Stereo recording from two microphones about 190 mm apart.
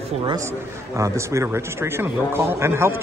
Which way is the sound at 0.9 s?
15° right (ahead or behind).